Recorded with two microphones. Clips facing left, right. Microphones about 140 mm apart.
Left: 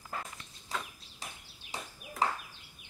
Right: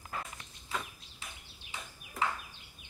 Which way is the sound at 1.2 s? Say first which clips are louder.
Left 3 dB; 40° left (ahead or behind).